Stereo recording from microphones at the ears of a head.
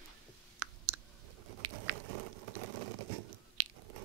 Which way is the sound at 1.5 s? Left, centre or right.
Right.